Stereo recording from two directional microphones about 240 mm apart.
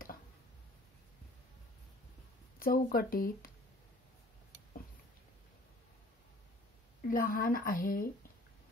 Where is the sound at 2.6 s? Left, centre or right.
Left.